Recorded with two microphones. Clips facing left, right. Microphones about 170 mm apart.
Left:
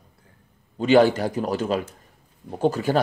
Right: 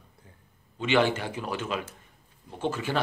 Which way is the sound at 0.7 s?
40° left (ahead or behind).